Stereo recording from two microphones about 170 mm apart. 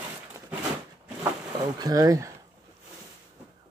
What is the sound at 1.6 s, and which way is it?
Speech, 20° right (ahead or behind).